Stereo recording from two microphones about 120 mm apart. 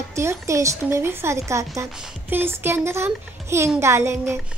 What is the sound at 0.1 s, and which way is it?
A woman's voice, 25° right (ahead or behind).